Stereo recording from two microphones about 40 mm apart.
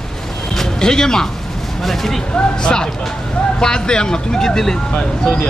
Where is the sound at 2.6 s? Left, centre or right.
Left.